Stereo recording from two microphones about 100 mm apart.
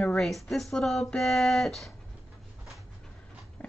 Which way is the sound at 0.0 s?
5° left (ahead or behind).